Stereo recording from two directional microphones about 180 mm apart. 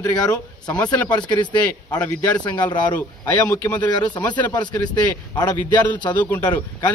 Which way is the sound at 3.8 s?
25° left (ahead or behind).